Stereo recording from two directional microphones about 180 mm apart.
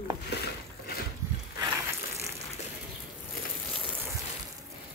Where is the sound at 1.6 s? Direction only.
15° right (ahead or behind).